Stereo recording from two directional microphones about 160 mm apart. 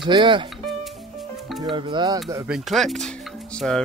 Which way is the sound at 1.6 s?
30° right (ahead or behind).